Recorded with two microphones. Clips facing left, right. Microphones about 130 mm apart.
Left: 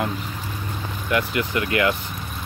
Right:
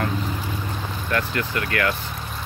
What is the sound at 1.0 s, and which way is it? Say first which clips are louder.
Speech: left 3 dB; 15° left (ahead or behind).